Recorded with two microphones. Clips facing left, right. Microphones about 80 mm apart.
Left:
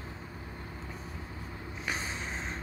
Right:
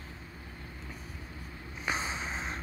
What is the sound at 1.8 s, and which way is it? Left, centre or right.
Vehicle, right.